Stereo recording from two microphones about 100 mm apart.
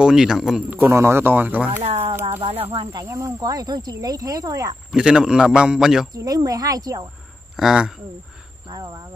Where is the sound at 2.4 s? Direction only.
80° right.